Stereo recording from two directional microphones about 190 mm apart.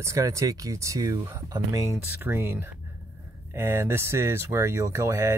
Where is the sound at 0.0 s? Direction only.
15° right (ahead or behind).